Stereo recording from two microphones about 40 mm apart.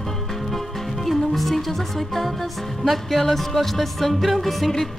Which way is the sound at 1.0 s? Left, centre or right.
Centre.